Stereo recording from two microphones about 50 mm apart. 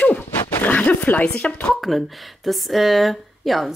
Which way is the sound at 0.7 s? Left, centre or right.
Left.